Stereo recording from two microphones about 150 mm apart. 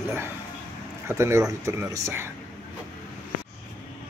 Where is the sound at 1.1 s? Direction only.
20° right (ahead or behind).